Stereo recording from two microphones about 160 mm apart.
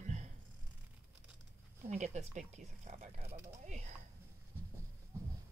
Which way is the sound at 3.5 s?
45° right (ahead or behind).